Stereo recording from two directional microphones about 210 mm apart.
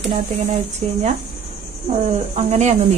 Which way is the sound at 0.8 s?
30° right (ahead or behind).